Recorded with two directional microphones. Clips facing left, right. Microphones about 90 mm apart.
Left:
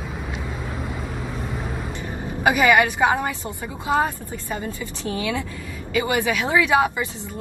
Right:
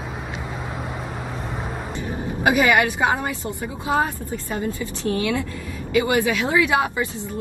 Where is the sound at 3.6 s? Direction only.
15° right (ahead or behind).